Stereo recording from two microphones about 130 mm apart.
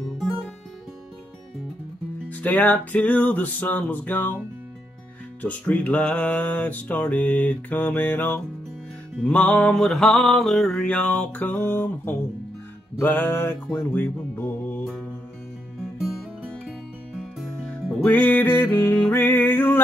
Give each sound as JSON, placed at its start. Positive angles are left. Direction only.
{"t": 2.2, "sound": "music", "side_deg": 10}
{"t": 5.4, "sound": "music", "side_deg": 10}
{"t": 13.7, "sound": "speech", "side_deg": 15}
{"t": 16.1, "sound": "music", "side_deg": 0}
{"t": 18.0, "sound": "music", "side_deg": 15}